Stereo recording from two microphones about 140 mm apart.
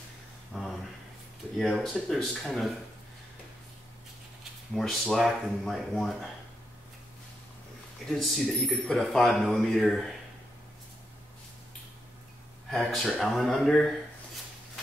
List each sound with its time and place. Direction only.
0.5 s a sound: centre (ahead or behind)
1.6 s speech: centre (ahead or behind)
4.7 s speech: centre (ahead or behind)
8.1 s speech: centre (ahead or behind)
12.6 s speech: 5° left (ahead or behind)